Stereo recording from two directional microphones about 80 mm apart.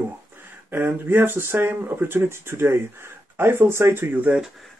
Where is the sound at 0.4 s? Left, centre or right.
Right.